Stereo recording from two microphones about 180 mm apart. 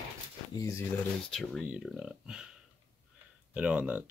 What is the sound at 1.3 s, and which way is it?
Speech, centre (ahead or behind).